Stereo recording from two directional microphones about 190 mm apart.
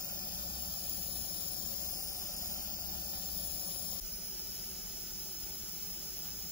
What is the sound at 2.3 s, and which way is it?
Vehicle, 15° right (ahead or behind).